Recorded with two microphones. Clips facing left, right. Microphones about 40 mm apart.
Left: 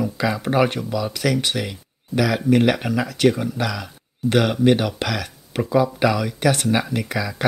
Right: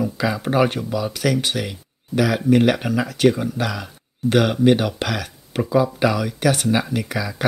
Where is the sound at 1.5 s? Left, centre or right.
Centre.